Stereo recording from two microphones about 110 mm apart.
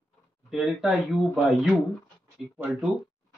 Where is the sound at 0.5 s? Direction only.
5° right (ahead or behind).